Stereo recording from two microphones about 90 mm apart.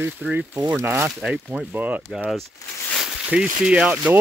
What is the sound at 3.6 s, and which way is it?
Speech, 10° right (ahead or behind).